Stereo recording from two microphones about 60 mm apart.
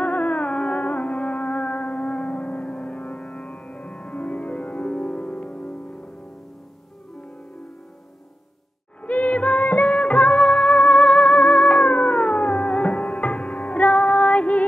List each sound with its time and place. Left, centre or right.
0.0 s music: left
9.0 s music: left